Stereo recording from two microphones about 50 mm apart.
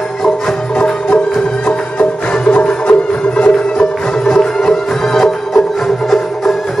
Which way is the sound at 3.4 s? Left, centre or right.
Centre.